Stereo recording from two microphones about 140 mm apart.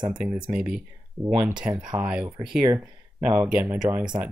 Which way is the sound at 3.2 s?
10° right (ahead or behind).